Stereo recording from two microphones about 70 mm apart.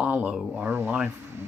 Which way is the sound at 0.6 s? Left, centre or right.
Right.